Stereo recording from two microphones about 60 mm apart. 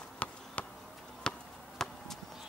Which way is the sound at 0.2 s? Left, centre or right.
Left.